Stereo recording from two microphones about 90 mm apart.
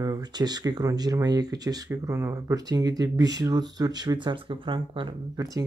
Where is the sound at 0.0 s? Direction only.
45° right (ahead or behind); by 5.1 s 65° right (ahead or behind).